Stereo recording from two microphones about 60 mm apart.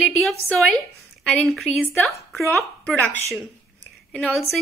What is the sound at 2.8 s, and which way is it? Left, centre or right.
Speech, left.